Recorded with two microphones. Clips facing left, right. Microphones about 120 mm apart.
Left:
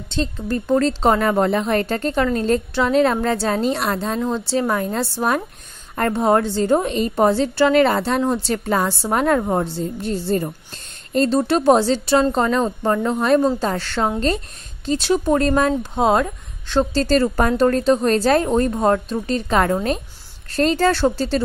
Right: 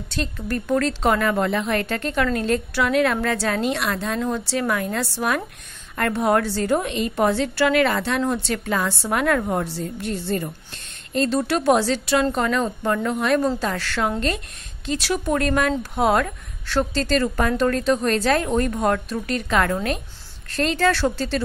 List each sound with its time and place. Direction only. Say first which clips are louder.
0.1 s a woman's voice: left 4 dB; 25° left (ahead or behind)
16.9 s speech: left 4 dB; 35° left (ahead or behind)